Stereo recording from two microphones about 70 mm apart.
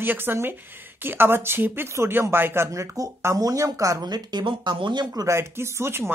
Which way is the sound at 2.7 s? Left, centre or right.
Right.